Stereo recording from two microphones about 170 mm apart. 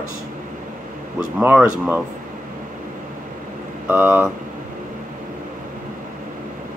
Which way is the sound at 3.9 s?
10° right (ahead or behind).